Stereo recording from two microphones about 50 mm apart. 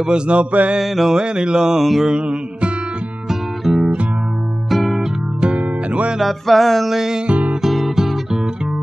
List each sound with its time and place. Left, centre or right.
0.0 s mantra: right
0.7 s music: centre
1.1 s music: centre
2.0 s mantra: right
3.3 s music: centre
5.4 s music: right
6.1 s music: centre
7.2 s music: right
7.6 s guitar: centre